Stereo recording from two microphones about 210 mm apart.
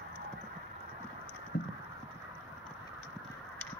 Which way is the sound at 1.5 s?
45° left (ahead or behind).